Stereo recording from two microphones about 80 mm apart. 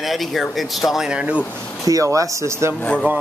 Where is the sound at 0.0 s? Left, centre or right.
Centre.